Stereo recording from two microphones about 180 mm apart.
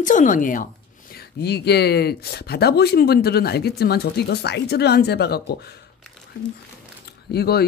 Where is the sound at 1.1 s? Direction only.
65° left (ahead or behind).